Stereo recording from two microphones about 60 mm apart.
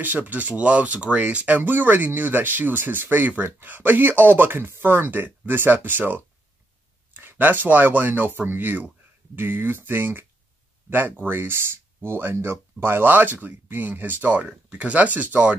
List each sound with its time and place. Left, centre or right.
0.0 s speech: right